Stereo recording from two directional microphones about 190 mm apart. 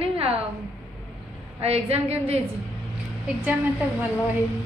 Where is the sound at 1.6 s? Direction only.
35° right (ahead or behind).